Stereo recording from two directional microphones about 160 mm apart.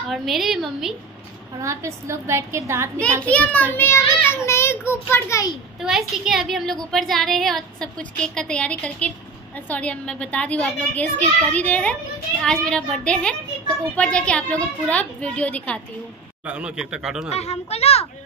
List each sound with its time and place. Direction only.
0.1 s a woman's voice: centre (ahead or behind)
1.6 s a woman's voice: 20° right (ahead or behind)
3.2 s a child's voice: 10° left (ahead or behind)
5.8 s a woman's voice: 5° right (ahead or behind)
16.4 s a woman's voice: 5° right (ahead or behind)
17.3 s speech: 40° left (ahead or behind)